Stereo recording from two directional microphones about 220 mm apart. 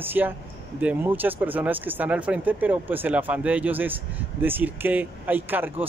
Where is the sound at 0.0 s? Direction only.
10° right (ahead or behind).